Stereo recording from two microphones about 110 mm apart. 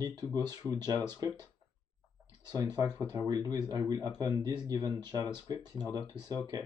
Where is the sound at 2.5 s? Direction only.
35° right (ahead or behind).